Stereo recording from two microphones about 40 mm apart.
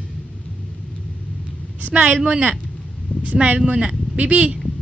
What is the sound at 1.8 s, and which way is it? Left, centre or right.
A woman's voice, right.